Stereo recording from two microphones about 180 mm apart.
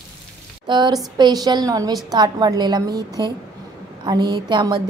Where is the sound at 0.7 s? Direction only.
25° right (ahead or behind).